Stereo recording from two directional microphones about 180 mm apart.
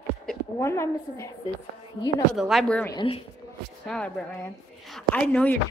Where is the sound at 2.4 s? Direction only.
Centre (ahead or behind).